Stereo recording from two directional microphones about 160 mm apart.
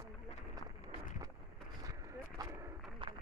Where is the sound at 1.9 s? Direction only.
20° right (ahead or behind).